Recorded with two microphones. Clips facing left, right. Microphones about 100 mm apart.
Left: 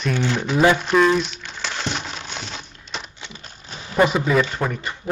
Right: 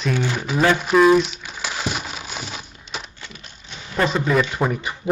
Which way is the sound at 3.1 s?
20° left (ahead or behind).